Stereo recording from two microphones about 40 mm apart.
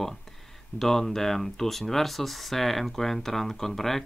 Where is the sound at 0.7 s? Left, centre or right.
Centre.